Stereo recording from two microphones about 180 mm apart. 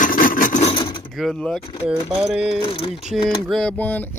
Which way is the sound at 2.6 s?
30° left (ahead or behind).